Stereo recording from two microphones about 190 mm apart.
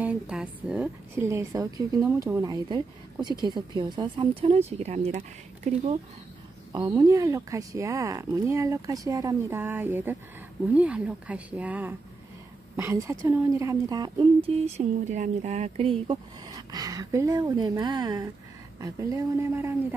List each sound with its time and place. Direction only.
0.0 s a woman's voice: 5° right (ahead or behind); by 5.9 s 35° right (ahead or behind)
6.7 s a woman's voice: 20° right (ahead or behind)